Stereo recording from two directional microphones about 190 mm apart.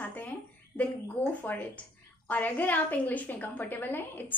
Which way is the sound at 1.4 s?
10° left (ahead or behind).